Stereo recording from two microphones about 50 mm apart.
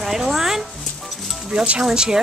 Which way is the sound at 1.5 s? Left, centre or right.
Centre.